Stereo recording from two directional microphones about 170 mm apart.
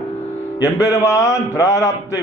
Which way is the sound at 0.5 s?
15° left (ahead or behind).